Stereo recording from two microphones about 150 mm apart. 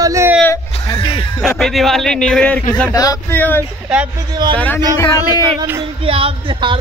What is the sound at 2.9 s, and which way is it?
Music, 25° left (ahead or behind).